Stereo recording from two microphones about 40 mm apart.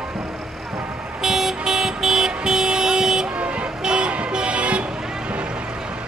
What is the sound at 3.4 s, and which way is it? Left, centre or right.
Vehicle, right.